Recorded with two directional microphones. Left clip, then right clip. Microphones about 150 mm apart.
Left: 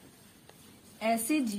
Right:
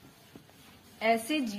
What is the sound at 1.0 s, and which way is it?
Speech, 20° left (ahead or behind).